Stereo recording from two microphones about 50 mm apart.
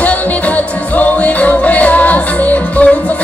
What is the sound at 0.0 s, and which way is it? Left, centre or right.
Music, left.